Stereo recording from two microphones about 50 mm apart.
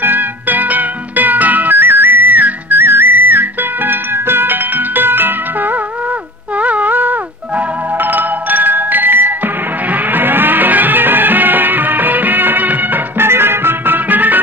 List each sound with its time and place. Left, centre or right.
0.0 s music: right
6.5 s music: right
13.2 s music: right